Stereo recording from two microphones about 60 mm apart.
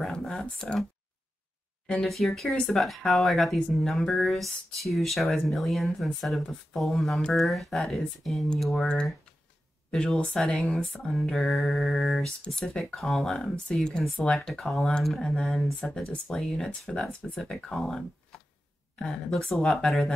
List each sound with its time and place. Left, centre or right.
0.0 s a sound: centre
1.9 s speech: centre
2.5 s speech: centre
3.0 s speech: centre
9.8 s speech: centre